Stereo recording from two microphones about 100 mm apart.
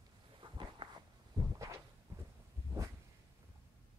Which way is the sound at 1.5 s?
30° right (ahead or behind).